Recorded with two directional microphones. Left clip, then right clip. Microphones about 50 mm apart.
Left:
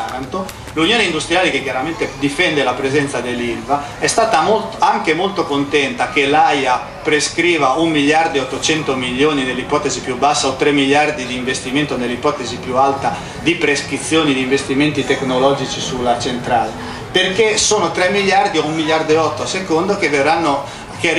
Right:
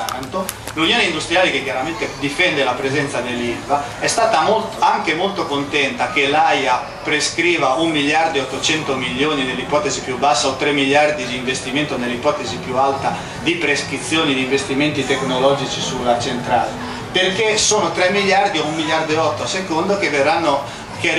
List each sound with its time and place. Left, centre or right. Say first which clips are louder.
0.7 s a man's voice: left 2 dB; left
16.1 s a man's voice: left 1 dB; centre
17.1 s a man's voice: left 2 dB; left